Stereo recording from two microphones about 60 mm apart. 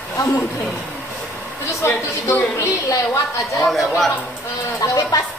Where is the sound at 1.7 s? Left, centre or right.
Left.